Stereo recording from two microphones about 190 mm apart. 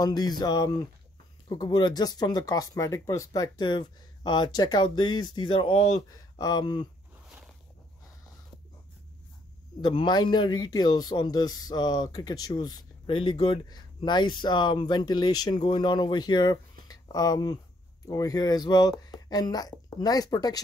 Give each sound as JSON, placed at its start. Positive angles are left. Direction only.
{"t": 0.0, "sound": "speech", "side_deg": 20}
{"t": 9.8, "sound": "speech", "side_deg": 25}
{"t": 16.8, "sound": "a sound", "side_deg": 20}
{"t": 18.0, "sound": "speech", "side_deg": 20}